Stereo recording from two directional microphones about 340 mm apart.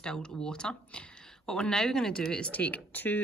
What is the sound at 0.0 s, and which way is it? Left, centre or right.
Speech, centre.